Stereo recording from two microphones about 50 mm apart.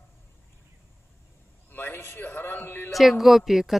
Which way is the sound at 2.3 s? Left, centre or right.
Left.